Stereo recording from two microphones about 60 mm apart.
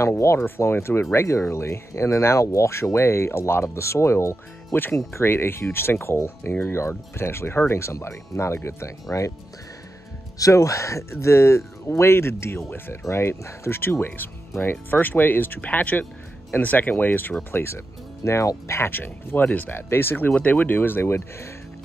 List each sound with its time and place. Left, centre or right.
0.0 s speech: left
10.4 s speech: left
20.3 s speech: left